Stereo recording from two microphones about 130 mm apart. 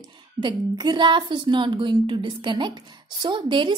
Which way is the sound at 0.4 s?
35° right (ahead or behind).